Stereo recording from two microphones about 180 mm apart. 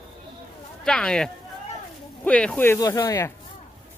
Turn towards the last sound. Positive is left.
turn(degrees=15)  # may be behind; listen again after turning